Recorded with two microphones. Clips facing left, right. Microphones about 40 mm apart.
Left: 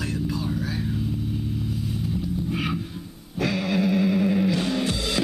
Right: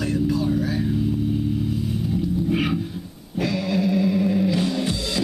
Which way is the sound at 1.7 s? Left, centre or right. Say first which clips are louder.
Right 4 dB; centre.